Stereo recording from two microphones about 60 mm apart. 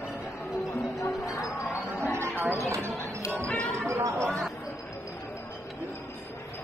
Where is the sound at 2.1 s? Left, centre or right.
Right.